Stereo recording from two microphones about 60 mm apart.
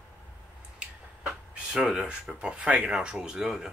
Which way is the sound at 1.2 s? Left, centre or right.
Centre.